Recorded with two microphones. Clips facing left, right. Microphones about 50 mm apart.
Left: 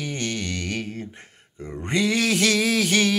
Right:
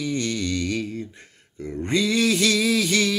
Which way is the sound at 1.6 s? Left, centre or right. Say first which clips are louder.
Right 1 dB; left.